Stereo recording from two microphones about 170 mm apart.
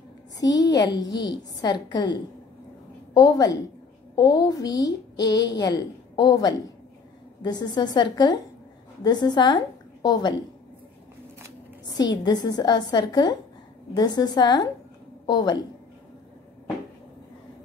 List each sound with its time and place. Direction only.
0.4 s a woman's voice: 25° left (ahead or behind)
1.1 s a woman's voice: 85° left
1.6 s a woman's voice: 25° left (ahead or behind)
3.2 s a woman's voice: 20° left (ahead or behind)
11.9 s a woman's voice: 25° left (ahead or behind)